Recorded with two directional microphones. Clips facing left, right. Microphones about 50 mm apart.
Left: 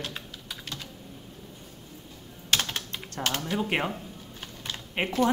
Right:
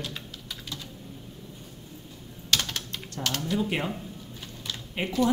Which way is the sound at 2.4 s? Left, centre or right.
Left.